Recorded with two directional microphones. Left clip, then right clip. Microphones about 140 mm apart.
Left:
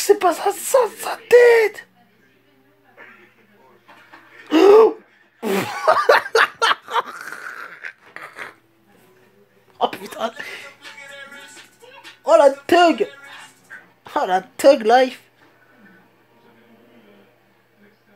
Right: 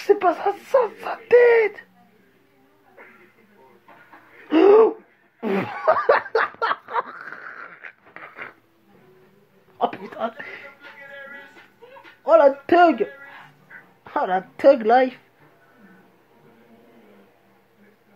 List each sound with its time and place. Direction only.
0.0 s speech: 20° left (ahead or behind)
4.5 s throat clearing: 20° left (ahead or behind)
5.4 s laughter: 25° left (ahead or behind)
9.8 s speech: 20° left (ahead or behind)
12.3 s speech: 15° left (ahead or behind)